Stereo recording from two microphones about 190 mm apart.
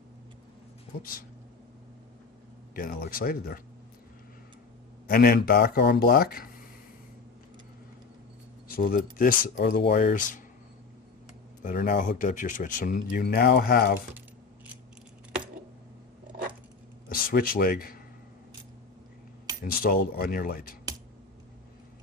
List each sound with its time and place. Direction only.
2.7 s speech: 50° left (ahead or behind)
5.0 s speech: 50° left (ahead or behind)
8.7 s speech: 55° left (ahead or behind)
11.6 s speech: 50° left (ahead or behind)
13.1 s speech: 55° left (ahead or behind)
17.1 s speech: 50° left (ahead or behind)
19.6 s speech: 50° left (ahead or behind)